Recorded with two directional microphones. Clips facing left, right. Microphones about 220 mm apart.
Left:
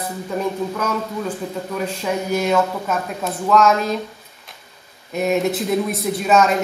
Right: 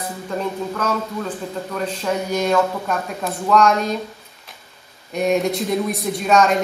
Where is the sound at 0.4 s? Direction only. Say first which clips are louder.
Left 2 dB; 10° left (ahead or behind).